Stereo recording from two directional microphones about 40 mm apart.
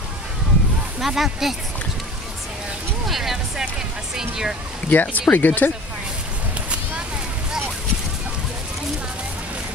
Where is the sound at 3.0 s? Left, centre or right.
Centre.